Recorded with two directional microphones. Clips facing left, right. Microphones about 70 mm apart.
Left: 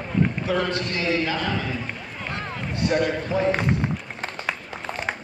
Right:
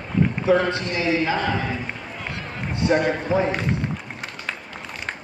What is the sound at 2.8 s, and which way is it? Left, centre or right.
Speech, right.